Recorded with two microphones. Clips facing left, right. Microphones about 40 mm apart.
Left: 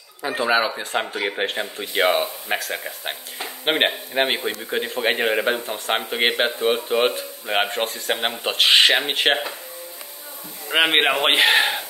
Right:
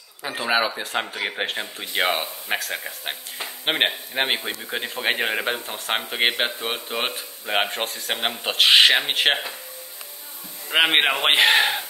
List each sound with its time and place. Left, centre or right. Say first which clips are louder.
0.2 s speech: left 2 dB; centre
10.7 s speech: left 1 dB; centre